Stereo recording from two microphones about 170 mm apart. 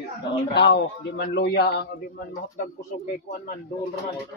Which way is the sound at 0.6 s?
80° left.